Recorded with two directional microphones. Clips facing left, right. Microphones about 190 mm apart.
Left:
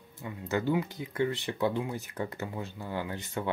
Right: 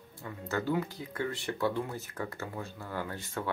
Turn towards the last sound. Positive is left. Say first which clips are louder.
# left 2 dB
turn(degrees=20)  # may be behind; listen again after turning